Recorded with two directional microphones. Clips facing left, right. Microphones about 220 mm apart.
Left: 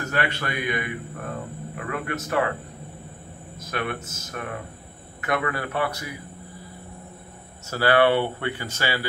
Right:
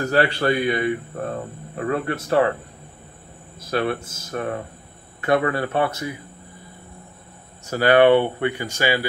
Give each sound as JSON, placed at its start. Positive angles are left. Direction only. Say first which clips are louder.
{"t": 0.0, "sound": "a man's voice", "louder": "right 8 dB", "side_deg": -35}
{"t": 3.5, "sound": "a man's voice", "louder": "right 7 dB", "side_deg": -30}
{"t": 7.7, "sound": "speech", "louder": "right 5 dB", "side_deg": -20}